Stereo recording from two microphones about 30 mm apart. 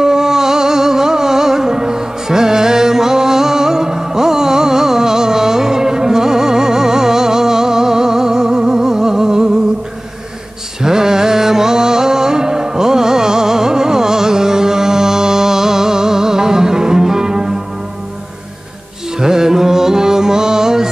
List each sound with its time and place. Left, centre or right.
0.0 s music: centre
10.8 s music: centre
19.1 s music: centre